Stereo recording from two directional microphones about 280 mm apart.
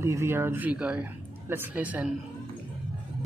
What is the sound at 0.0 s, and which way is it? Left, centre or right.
A woman's voice, centre.